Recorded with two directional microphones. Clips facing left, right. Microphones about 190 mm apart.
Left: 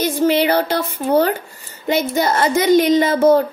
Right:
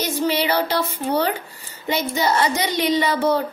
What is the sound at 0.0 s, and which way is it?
Speech, 50° left (ahead or behind).